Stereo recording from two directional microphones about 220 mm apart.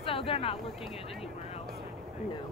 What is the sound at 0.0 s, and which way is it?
Speech, 25° left (ahead or behind).